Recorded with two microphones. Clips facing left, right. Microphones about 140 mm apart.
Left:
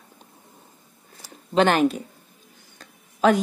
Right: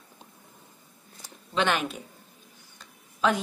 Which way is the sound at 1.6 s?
40° left (ahead or behind).